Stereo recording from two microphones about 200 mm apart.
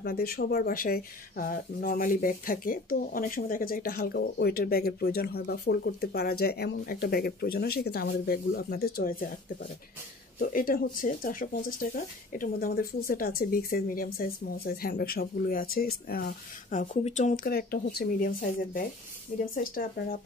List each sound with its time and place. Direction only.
0.0 s speech: 50° left (ahead or behind)
10.4 s speech: 45° left (ahead or behind)